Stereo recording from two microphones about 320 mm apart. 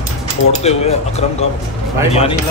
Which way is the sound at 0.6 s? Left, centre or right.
Centre.